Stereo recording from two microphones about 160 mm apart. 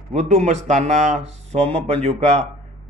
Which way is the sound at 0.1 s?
45° right (ahead or behind).